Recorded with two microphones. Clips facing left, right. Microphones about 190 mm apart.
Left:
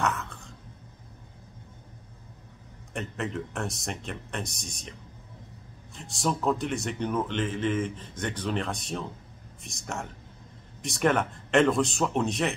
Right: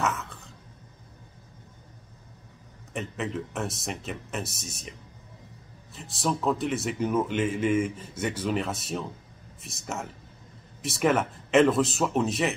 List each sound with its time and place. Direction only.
0.0 s a sound: centre (ahead or behind)
2.9 s speech: centre (ahead or behind)
5.9 s speech: centre (ahead or behind)